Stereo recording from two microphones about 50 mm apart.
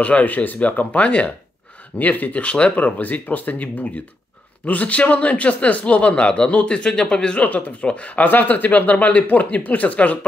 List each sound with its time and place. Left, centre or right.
0.0 s speech: left
7.4 s speech: left